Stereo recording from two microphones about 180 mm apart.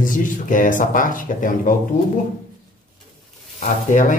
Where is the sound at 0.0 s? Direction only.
45° left (ahead or behind).